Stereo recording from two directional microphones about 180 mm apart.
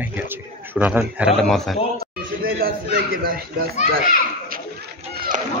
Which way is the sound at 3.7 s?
50° left (ahead or behind).